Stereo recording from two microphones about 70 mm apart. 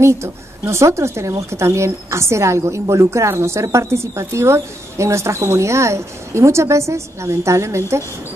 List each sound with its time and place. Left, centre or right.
0.0 s a woman's voice: right